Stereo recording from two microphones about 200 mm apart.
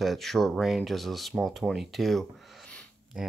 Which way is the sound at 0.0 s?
Centre (ahead or behind).